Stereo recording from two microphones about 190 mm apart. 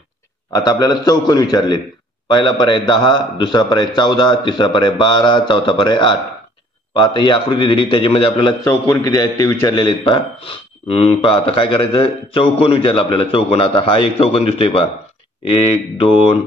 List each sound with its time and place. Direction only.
0.5 s a man's voice: 20° left (ahead or behind)
2.9 s a man's voice: 25° left (ahead or behind)
8.6 s a man's voice: 15° left (ahead or behind)